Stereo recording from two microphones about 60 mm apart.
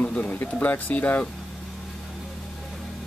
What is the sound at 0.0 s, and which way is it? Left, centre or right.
Speech, left.